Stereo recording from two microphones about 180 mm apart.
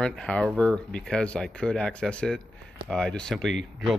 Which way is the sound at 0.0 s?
5° left (ahead or behind).